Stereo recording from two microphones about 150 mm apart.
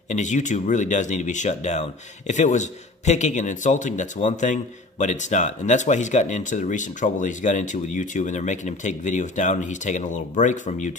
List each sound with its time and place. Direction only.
0.1 s speech: 55° left (ahead or behind)